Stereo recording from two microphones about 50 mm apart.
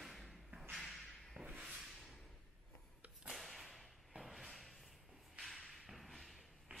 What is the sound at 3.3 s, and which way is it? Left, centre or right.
Whip, centre.